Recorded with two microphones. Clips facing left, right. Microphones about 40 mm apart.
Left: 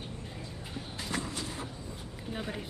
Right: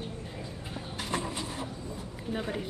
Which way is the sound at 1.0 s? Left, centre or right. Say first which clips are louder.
Right 3 dB; right.